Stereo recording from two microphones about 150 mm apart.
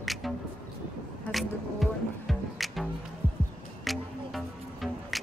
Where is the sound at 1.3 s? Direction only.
Centre (ahead or behind).